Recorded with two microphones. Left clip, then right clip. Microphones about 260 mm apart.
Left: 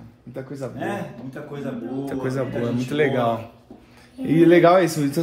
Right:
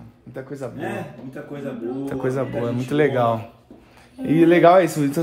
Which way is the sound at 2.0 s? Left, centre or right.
Right.